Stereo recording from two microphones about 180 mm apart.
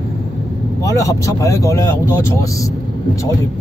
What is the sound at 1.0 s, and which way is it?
Speech, 15° left (ahead or behind).